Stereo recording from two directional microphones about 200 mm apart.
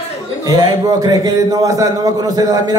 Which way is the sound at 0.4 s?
20° right (ahead or behind).